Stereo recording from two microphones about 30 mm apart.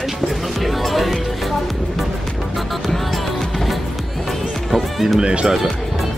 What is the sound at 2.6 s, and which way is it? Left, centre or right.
Music, centre.